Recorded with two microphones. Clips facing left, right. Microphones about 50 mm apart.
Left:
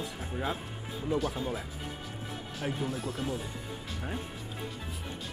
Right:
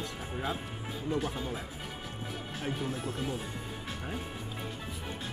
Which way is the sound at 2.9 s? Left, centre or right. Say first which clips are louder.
Left 1 dB; right.